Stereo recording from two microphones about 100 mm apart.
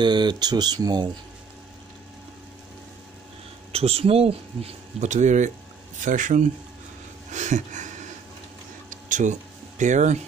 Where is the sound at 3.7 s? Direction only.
80° right.